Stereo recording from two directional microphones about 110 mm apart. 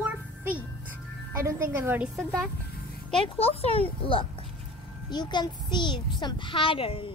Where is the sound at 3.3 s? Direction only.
65° left (ahead or behind).